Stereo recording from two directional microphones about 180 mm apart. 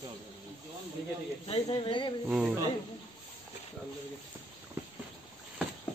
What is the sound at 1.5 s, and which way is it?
Speech, 30° left (ahead or behind).